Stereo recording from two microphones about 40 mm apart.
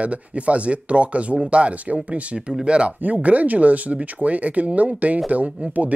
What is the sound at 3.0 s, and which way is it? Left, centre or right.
Speech, right.